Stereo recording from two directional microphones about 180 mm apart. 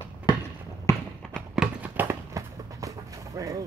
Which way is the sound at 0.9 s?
15° left (ahead or behind).